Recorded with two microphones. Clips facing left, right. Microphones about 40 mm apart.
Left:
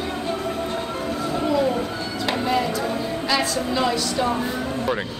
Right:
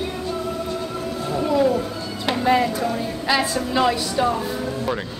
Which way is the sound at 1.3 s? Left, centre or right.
Centre.